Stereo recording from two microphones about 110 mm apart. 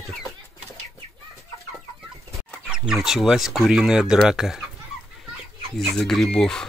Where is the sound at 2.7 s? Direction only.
5° right (ahead or behind).